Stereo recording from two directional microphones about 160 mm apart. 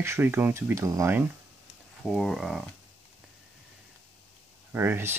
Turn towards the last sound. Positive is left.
turn(degrees=-15)  # may be behind; listen again after turning